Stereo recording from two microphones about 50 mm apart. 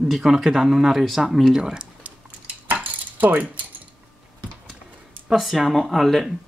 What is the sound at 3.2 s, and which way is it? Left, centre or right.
Speech, right.